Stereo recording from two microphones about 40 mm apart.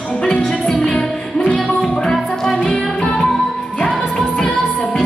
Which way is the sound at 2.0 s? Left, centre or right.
Centre.